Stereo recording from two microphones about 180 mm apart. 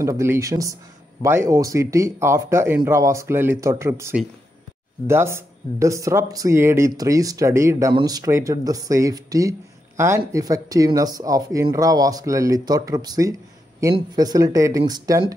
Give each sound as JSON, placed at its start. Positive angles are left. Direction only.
{"t": 0.0, "sound": "speech", "side_deg": -15}